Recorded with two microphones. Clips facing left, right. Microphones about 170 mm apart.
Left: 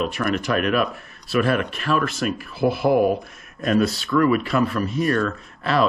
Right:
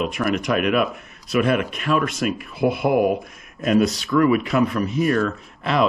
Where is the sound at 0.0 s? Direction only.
5° right (ahead or behind).